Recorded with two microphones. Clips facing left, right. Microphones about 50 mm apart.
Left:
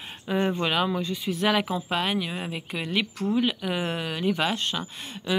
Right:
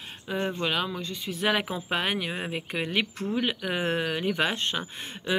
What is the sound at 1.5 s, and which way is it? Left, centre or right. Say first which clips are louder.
Speech: left 2 dB; right.